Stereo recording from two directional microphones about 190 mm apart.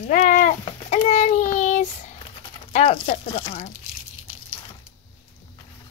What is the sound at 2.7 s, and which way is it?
Speech, 30° left (ahead or behind).